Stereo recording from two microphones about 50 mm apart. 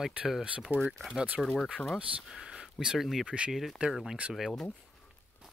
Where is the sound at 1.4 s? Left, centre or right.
Centre.